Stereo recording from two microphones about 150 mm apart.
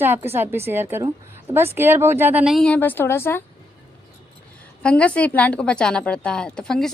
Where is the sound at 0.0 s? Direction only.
15° right (ahead or behind).